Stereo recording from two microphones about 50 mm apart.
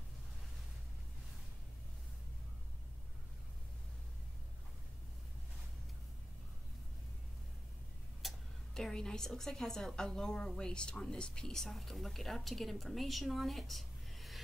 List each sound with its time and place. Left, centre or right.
8.2 s tick-tock: centre
8.9 s a woman's voice: centre